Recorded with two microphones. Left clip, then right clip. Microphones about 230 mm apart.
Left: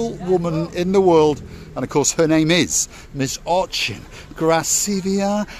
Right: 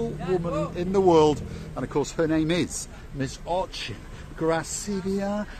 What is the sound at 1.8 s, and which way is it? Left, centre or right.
Speech, left.